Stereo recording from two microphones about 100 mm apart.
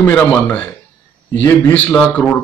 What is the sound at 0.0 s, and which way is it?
Speech, 10° left (ahead or behind).